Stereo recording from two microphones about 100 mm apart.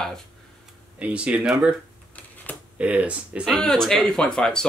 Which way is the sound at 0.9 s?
15° right (ahead or behind).